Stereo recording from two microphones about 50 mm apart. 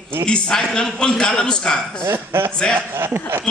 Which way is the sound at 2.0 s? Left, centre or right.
Right.